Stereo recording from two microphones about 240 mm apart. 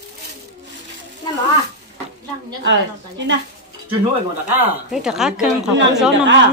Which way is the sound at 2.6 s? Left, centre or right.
Right.